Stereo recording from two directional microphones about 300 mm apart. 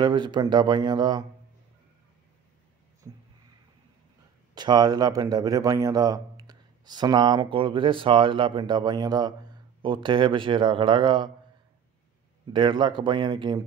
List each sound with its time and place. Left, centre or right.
0.0 s a man's voice: centre
4.6 s a man's voice: centre
12.5 s a man's voice: centre